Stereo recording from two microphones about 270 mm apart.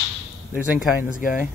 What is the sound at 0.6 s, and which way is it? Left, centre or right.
Speech, centre.